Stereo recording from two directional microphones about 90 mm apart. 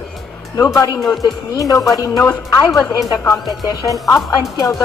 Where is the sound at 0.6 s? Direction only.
35° left (ahead or behind).